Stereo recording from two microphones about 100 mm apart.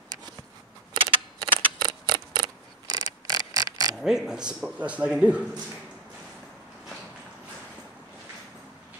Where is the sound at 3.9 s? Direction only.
5° right (ahead or behind).